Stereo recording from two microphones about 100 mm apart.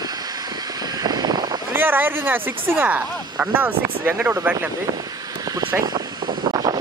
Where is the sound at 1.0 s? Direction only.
45° right (ahead or behind).